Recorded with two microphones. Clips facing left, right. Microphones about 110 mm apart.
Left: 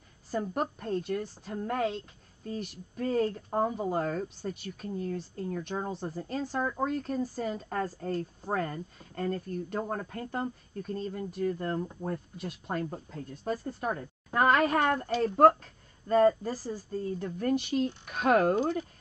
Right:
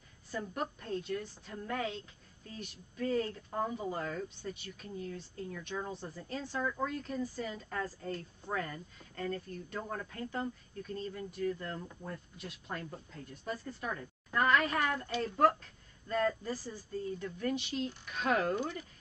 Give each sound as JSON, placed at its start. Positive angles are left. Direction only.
{"t": 0.3, "sound": "a woman's voice", "side_deg": 45}
{"t": 15.0, "sound": "a woman's voice", "side_deg": 35}